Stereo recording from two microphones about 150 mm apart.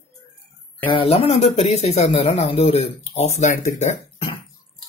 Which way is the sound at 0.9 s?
40° left (ahead or behind).